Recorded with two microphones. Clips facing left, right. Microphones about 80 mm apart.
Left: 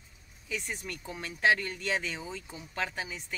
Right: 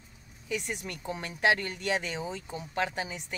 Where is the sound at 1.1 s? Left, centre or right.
Right.